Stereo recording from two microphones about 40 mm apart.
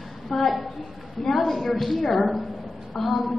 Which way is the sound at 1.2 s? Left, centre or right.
Centre.